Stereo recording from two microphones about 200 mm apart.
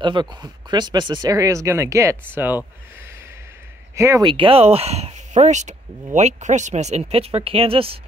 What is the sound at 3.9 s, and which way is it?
Speech, 15° right (ahead or behind).